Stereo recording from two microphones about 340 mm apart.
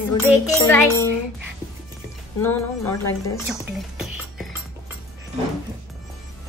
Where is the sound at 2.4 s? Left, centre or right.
Centre.